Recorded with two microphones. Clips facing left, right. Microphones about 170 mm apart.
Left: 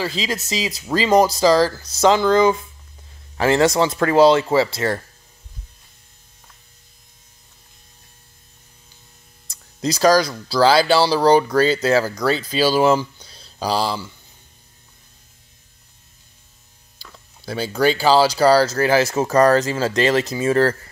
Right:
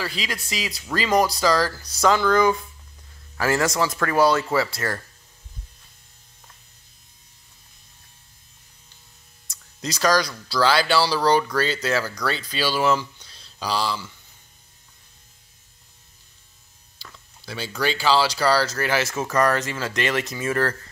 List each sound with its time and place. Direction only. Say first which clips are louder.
0.0 s speech: left 6 dB; 25° left (ahead or behind)
9.5 s speech: left 8 dB; 30° left (ahead or behind)
17.5 s speech: left 7 dB; 45° left (ahead or behind)